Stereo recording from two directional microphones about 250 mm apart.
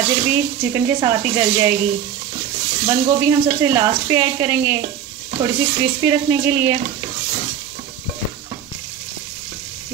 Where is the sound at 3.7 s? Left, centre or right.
Centre.